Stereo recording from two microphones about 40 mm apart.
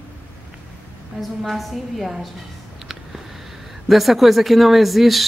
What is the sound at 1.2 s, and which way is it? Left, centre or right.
A woman's voice, centre.